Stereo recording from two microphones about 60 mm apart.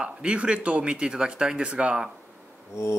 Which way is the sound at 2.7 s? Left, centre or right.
Left.